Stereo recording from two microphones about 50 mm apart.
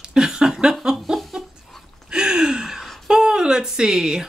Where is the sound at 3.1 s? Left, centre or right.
Centre.